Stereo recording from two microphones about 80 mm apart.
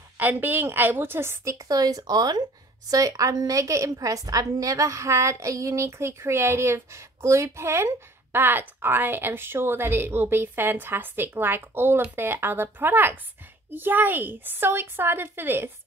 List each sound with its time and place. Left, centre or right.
0.2 s a woman's voice: right
1.7 s a woman's voice: right